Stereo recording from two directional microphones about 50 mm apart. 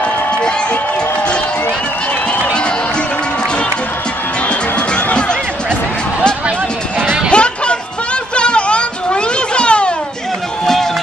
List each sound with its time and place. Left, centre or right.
4.5 s music: left
7.2 s music: left
8.4 s a sound: left
10.6 s music: centre